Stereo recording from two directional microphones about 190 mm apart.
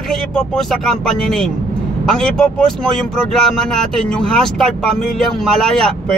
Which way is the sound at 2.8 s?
Centre (ahead or behind).